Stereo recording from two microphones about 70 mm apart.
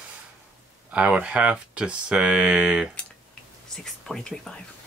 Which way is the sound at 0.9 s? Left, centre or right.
Centre.